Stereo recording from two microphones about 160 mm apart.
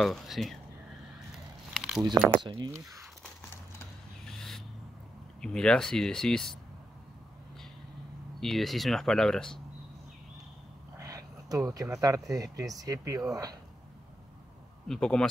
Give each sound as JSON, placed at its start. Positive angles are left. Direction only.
{"t": 0.0, "sound": "speech", "side_deg": 0}
{"t": 1.7, "sound": "a sound", "side_deg": 0}
{"t": 2.3, "sound": "speech", "side_deg": -30}
{"t": 4.3, "sound": "owl", "side_deg": 5}
{"t": 5.4, "sound": "speech", "side_deg": 5}
{"t": 8.4, "sound": "speech", "side_deg": 0}
{"t": 11.0, "sound": "a sound", "side_deg": -20}
{"t": 12.5, "sound": "speech", "side_deg": -20}
{"t": 14.9, "sound": "speech", "side_deg": 5}